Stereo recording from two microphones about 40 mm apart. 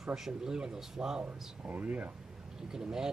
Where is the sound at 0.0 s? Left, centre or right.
Centre.